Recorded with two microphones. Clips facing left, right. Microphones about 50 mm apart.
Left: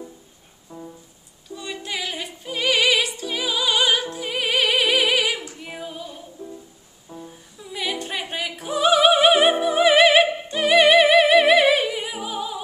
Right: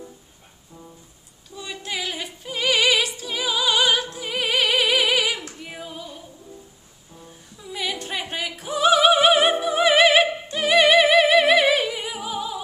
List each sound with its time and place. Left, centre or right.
0.7 s music: left
1.5 s music: centre
5.5 s female singing: centre
7.2 s music: centre